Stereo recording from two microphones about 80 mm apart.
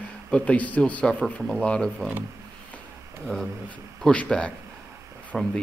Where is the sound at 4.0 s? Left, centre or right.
Centre.